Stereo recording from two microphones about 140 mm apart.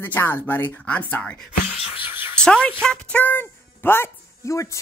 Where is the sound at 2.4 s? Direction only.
5° left (ahead or behind).